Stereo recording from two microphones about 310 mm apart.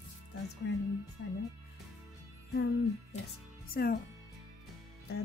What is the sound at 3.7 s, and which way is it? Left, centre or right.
Speech, left.